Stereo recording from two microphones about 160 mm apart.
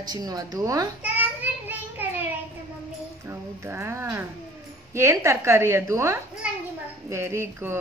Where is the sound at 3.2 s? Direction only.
15° right (ahead or behind).